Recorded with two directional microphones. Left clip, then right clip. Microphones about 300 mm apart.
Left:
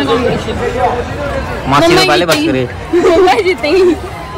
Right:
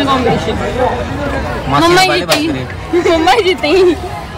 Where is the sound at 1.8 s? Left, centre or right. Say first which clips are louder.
Even; centre.